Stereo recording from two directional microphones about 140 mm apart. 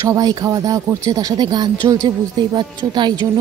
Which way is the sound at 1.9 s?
30° right (ahead or behind).